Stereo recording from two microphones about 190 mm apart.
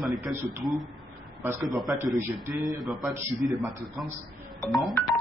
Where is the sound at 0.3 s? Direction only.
5° right (ahead or behind).